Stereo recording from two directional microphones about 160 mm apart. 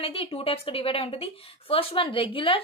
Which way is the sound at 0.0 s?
35° left (ahead or behind).